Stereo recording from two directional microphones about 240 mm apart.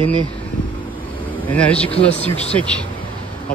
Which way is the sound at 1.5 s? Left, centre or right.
Centre.